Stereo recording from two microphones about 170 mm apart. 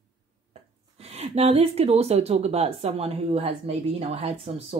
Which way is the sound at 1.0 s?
35° right (ahead or behind).